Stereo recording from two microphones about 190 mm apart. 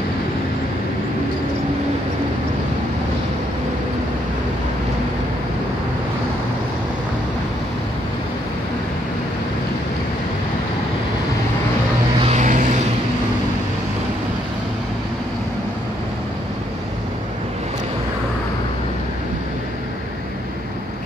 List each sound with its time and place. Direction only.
12.3 s vehicle: 40° right (ahead or behind)